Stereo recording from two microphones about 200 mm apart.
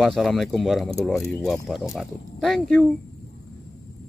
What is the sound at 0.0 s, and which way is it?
Speech, centre (ahead or behind).